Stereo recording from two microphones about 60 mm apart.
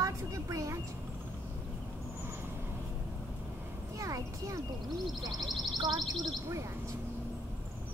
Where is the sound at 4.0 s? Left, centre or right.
Right.